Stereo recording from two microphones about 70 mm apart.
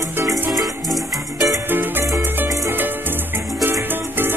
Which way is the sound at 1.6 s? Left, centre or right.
Right.